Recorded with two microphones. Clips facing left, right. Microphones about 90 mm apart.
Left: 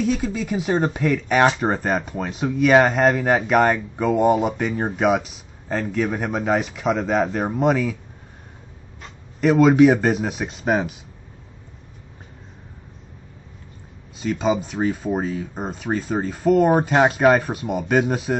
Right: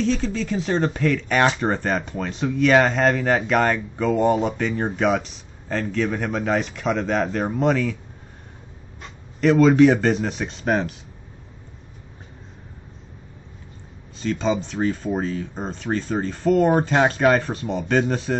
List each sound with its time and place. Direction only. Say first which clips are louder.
0.0 s speech: even; 10° left (ahead or behind)
9.4 s speech: even; 10° left (ahead or behind)
14.1 s speech: left 1 dB; 10° left (ahead or behind)